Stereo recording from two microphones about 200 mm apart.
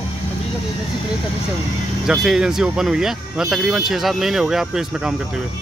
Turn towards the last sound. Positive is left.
turn(degrees=-5)  # may be behind; listen again after turning